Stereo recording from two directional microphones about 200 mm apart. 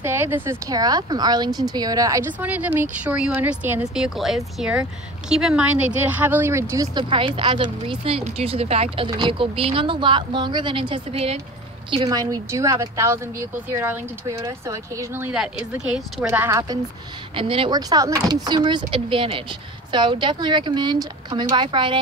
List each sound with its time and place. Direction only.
0.0 s speech: 10° right (ahead or behind)